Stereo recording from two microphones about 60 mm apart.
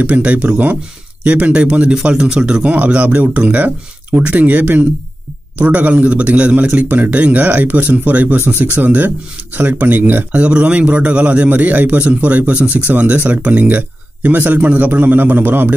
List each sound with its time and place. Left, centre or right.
0.0 s a man's voice: right
10.3 s a man's voice: centre